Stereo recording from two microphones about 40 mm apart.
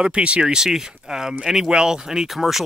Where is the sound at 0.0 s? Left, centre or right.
Right.